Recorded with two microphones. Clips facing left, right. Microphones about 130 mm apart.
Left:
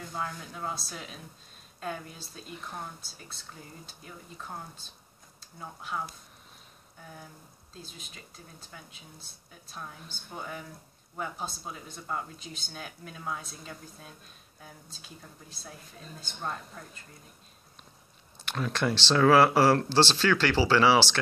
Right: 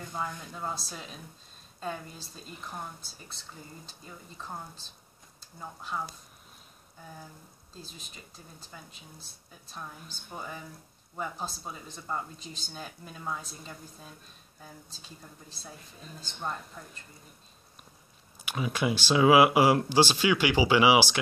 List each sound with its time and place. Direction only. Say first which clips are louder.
0.1 s speech: even; centre (ahead or behind)
5.6 s speech: even; centre (ahead or behind)
8.1 s speech: even; 5° right (ahead or behind)
16.2 s speech: even; centre (ahead or behind)
18.4 s speech: even; 10° right (ahead or behind)